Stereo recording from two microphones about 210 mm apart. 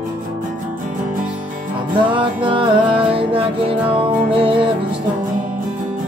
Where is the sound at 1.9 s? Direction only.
25° right (ahead or behind).